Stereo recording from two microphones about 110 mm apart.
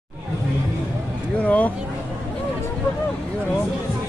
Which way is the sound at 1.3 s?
15° left (ahead or behind).